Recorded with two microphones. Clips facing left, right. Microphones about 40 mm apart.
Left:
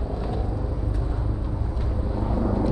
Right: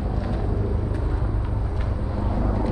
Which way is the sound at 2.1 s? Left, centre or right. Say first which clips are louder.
Left 2 dB; right.